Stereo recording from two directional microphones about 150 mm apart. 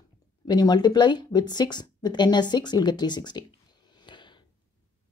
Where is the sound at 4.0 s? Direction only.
30° left (ahead or behind).